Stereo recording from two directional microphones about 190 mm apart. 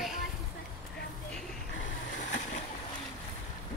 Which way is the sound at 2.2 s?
40° left (ahead or behind).